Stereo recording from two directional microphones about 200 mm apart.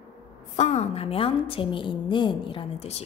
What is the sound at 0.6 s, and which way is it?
A woman's voice, 30° left (ahead or behind).